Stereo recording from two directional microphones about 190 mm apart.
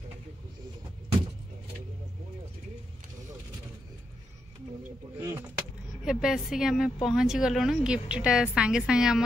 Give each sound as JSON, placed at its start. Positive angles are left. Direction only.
{"t": 5.2, "sound": "vehicle", "side_deg": -15}
{"t": 6.0, "sound": "a woman's voice", "side_deg": 0}